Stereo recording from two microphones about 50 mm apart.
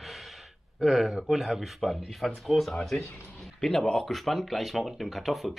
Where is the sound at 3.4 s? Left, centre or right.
Centre.